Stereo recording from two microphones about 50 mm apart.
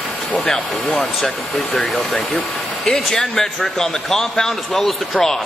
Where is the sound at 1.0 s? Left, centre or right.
Centre.